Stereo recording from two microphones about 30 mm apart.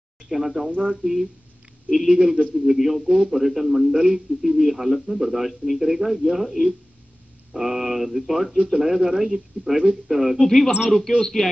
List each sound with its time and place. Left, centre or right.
0.3 s a man's voice: centre
2.0 s a man's voice: centre
10.4 s a man's voice: centre